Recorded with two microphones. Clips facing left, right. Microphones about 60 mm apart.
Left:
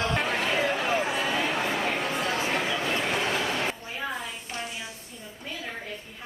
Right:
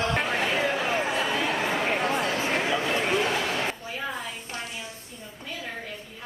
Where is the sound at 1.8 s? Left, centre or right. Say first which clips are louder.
Right 2 dB; right.